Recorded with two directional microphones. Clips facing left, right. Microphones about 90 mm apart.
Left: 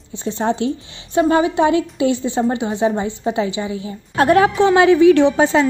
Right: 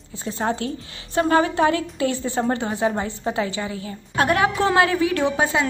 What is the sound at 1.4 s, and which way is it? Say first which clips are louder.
A woman's voice: left 4 dB; 20° left (ahead or behind).